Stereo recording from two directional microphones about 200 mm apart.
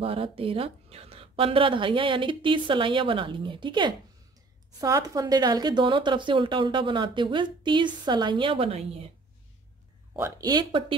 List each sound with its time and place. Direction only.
0.0 s speech: 25° right (ahead or behind)
10.1 s speech: 15° right (ahead or behind)